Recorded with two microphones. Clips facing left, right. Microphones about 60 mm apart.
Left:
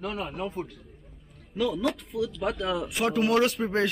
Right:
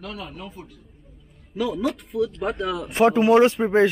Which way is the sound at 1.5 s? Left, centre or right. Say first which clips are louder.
Right 2 dB; centre.